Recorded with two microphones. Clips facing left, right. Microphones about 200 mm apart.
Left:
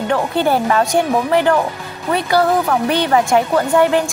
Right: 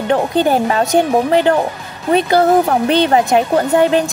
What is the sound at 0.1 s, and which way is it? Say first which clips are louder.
Speech: right 3 dB; 20° right (ahead or behind).